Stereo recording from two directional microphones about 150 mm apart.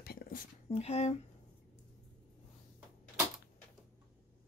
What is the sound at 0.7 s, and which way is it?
Speech, 40° left (ahead or behind).